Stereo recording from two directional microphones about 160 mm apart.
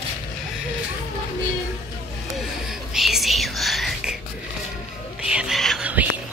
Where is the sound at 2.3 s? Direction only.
Centre (ahead or behind).